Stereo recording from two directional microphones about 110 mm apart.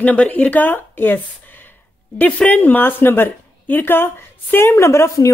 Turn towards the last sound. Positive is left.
turn(degrees=30)  # may be behind; listen again after turning